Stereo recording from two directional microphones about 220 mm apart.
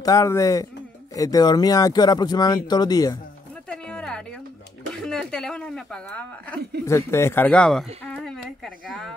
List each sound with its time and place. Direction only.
0.0 s speech: 15° left (ahead or behind)
3.6 s music: 5° left (ahead or behind)
4.9 s speech: 5° left (ahead or behind)